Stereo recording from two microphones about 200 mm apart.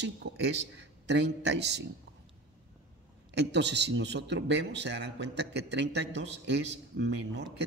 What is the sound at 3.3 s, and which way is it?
A man's voice, 60° right (ahead or behind).